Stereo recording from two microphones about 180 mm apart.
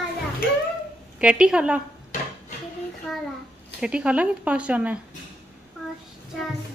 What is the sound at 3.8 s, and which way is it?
Speech, 5° right (ahead or behind).